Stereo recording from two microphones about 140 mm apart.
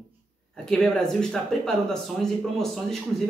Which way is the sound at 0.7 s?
5° left (ahead or behind).